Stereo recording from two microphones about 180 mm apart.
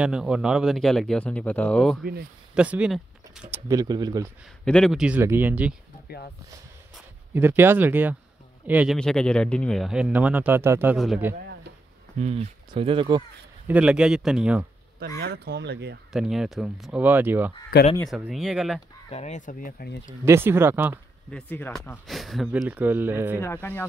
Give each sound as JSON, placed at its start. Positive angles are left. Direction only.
{"t": 0.0, "sound": "speech", "side_deg": -5}
{"t": 2.5, "sound": "speech", "side_deg": -5}
{"t": 4.6, "sound": "speech", "side_deg": 5}
{"t": 7.3, "sound": "speech", "side_deg": -10}
{"t": 8.9, "sound": "speech", "side_deg": 5}
{"t": 12.2, "sound": "speech", "side_deg": -35}
{"t": 13.7, "sound": "speech", "side_deg": -5}
{"t": 15.0, "sound": "speech", "side_deg": -60}
{"t": 16.1, "sound": "speech", "side_deg": 0}
{"t": 19.0, "sound": "speech", "side_deg": 35}
{"t": 20.2, "sound": "speech", "side_deg": -15}
{"t": 21.3, "sound": "speech", "side_deg": 10}
{"t": 22.0, "sound": "speech", "side_deg": 0}
{"t": 23.4, "sound": "speech", "side_deg": 10}